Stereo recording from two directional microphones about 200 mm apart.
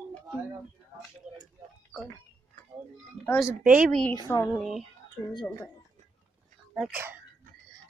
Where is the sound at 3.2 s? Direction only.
35° right (ahead or behind).